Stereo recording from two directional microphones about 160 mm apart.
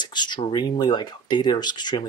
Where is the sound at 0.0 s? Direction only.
25° left (ahead or behind).